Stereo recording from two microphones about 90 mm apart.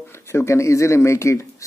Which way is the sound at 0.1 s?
30° left (ahead or behind).